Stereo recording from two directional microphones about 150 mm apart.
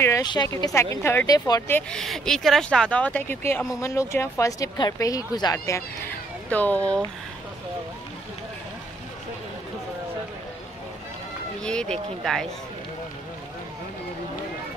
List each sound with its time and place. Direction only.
0.0 s speech: 20° left (ahead or behind)
1.7 s speech: 10° left (ahead or behind)
6.5 s speech: 10° left (ahead or behind)
11.6 s speech: 5° left (ahead or behind)